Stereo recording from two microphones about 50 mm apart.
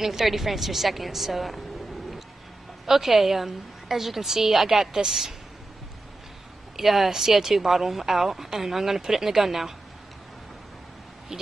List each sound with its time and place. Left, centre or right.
0.0 s a woman's voice: centre
2.9 s a woman's voice: centre
6.8 s a woman's voice: centre